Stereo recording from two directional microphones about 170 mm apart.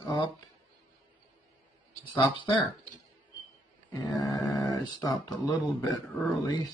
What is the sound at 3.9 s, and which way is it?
Speech, 25° left (ahead or behind).